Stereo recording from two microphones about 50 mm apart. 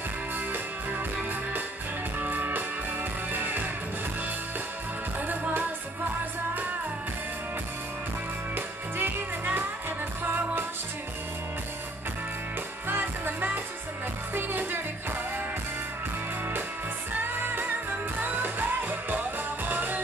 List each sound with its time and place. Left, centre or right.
2.1 s music: right
8.5 s music: right
12.8 s music: right
17.2 s music: right